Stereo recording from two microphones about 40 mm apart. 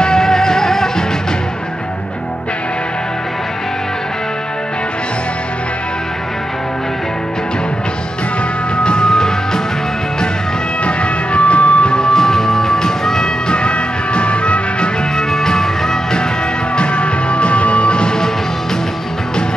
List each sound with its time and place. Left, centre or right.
0.0 s music: centre
8.7 s music: left
10.8 s music: left
15.3 s music: centre
16.7 s music: left